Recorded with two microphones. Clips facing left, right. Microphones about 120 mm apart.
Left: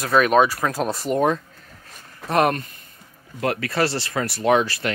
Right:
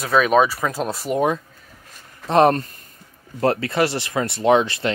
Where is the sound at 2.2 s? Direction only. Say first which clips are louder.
Right 4 dB; 25° right (ahead or behind).